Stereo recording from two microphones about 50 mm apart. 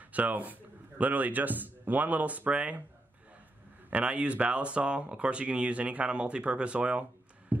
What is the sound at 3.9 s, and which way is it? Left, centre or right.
Speech, right.